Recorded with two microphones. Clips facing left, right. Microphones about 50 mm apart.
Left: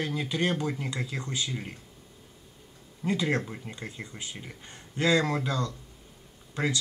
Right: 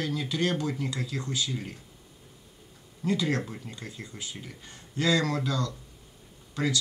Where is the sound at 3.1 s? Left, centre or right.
Left.